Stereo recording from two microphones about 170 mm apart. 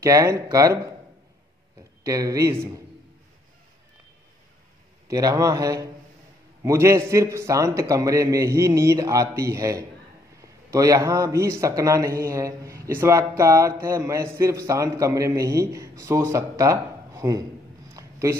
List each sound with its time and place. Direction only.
0.0 s a man's voice: 20° right (ahead or behind)
2.0 s a man's voice: 20° right (ahead or behind)
5.0 s a man's voice: 20° right (ahead or behind)
17.9 s a sound: 15° right (ahead or behind)